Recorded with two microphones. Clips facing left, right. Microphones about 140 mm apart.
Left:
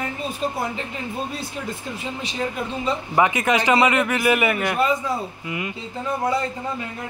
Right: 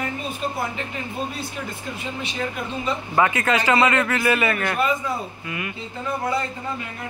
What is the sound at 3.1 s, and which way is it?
A man's voice, 15° left (ahead or behind).